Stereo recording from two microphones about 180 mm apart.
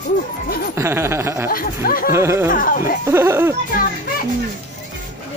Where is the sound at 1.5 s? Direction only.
55° left (ahead or behind).